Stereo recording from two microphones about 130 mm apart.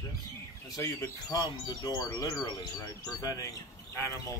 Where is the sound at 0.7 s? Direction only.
25° left (ahead or behind).